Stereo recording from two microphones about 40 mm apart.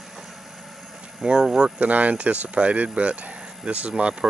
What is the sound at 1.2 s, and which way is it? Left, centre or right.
Speech, centre.